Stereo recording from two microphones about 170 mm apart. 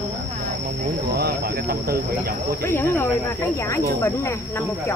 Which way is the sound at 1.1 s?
70° right (ahead or behind).